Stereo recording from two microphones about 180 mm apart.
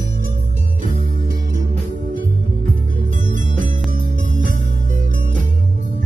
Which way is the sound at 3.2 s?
45° right (ahead or behind).